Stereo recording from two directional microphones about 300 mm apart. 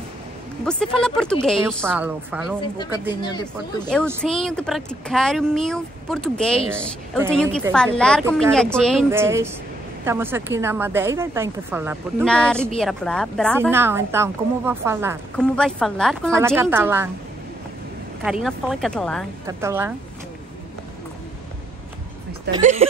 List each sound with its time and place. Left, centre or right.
0.7 s a woman's voice: centre
3.2 s a woman's voice: centre
4.2 s a woman's voice: centre
9.1 s a woman's voice: centre
15.3 s a woman's voice: centre
16.3 s a woman's voice: centre
18.2 s a woman's voice: centre
19.4 s a woman's voice: centre
22.6 s speech: right